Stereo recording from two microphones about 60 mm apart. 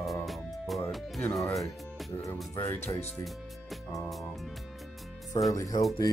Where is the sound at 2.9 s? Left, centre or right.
Left.